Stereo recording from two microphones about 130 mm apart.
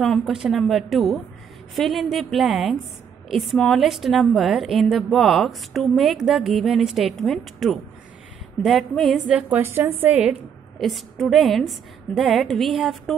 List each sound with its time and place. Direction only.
0.0 s a woman's voice: centre (ahead or behind)
9.6 s a woman's voice: 15° right (ahead or behind)
10.8 s a woman's voice: centre (ahead or behind)